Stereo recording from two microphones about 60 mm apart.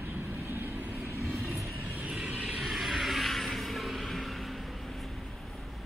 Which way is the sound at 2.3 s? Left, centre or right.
Centre.